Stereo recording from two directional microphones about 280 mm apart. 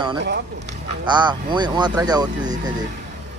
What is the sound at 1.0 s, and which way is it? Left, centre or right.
Speech, centre.